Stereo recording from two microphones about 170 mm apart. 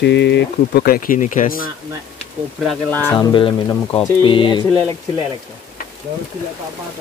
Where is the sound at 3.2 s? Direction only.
25° left (ahead or behind).